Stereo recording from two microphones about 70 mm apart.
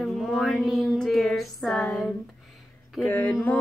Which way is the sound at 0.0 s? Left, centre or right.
Centre.